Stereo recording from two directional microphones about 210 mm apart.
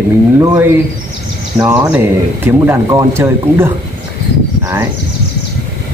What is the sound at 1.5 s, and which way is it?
Speech, 10° right (ahead or behind).